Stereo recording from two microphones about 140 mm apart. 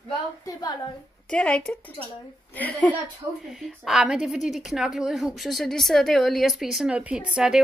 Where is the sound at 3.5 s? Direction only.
5° right (ahead or behind).